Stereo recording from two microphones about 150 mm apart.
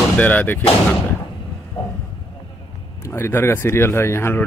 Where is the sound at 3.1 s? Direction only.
15° left (ahead or behind).